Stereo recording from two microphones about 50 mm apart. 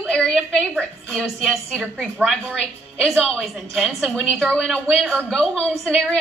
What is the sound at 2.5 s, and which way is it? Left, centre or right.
Speech, centre.